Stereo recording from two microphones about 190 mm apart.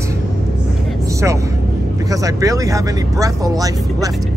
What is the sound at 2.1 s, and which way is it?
Speech, 15° right (ahead or behind).